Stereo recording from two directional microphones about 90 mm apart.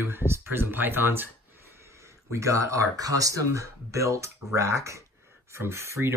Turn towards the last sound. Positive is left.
turn(degrees=-30)  # may be behind; listen again after turning